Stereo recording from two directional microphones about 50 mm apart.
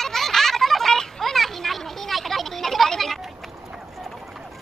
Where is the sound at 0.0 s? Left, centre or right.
Centre.